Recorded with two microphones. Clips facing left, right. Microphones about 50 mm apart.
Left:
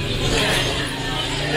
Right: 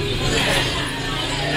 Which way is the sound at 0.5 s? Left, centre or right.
Centre.